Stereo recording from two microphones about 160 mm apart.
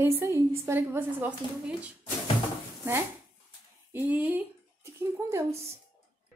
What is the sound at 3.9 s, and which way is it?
Speech, 10° right (ahead or behind).